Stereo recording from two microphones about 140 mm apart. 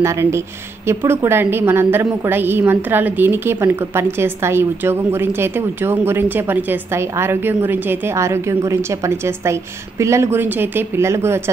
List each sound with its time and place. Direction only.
0.0 s a woman's voice: 20° right (ahead or behind)